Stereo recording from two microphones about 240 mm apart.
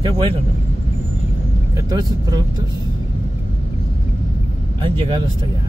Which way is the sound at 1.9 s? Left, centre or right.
Centre.